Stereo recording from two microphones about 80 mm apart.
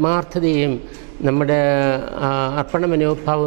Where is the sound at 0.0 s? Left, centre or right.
Centre.